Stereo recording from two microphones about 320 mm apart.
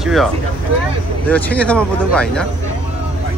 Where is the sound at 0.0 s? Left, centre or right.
Centre.